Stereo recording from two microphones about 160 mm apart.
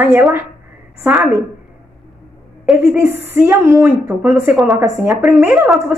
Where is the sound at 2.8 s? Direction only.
10° right (ahead or behind).